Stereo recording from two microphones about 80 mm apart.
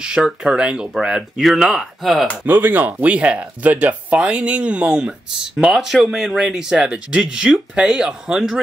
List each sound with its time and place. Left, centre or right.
0.0 s speech: centre
2.4 s speech: right; by 8.5 s centre